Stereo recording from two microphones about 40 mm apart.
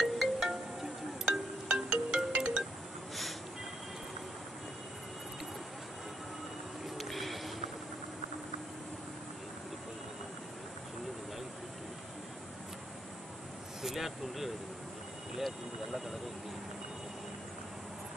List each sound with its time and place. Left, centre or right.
0.0 s music: centre
1.7 s music: right
7.0 s a sound: centre
13.8 s speech: centre